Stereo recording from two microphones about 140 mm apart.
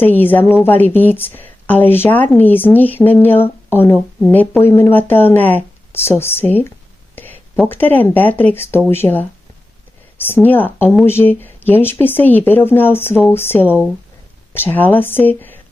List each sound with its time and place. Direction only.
0.0 s speech: 15° left (ahead or behind)